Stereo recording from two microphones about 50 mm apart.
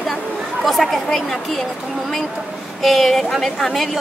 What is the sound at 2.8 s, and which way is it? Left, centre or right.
A woman's voice, centre.